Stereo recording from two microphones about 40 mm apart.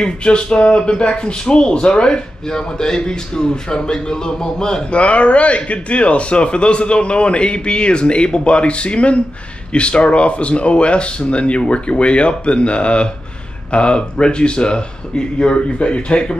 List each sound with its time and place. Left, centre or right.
0.0 s speech: left
4.9 s speech: left